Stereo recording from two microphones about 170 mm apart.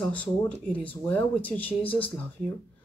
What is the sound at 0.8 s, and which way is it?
Speech, 10° left (ahead or behind).